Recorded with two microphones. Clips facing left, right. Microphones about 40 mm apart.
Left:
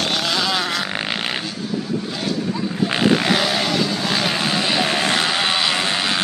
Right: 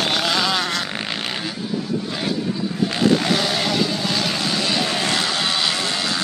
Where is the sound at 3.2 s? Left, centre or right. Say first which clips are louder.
Left 2 dB; centre.